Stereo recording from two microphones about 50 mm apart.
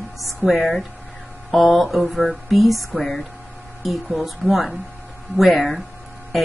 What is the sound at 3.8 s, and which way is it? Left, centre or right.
A woman's voice, centre.